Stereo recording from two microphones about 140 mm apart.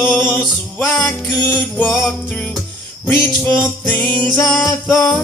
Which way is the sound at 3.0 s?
10° left (ahead or behind).